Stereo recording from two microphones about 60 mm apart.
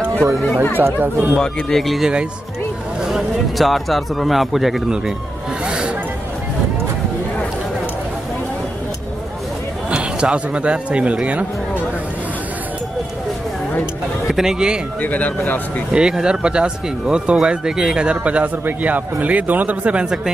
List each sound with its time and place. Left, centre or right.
0.7 s speech: right
1.3 s speech: centre
5.7 s a sound: centre
9.8 s speech: centre
14.2 s speech: centre
15.0 s speech: left
15.9 s speech: centre